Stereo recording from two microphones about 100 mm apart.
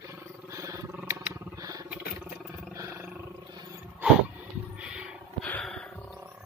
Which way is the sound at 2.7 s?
30° right (ahead or behind).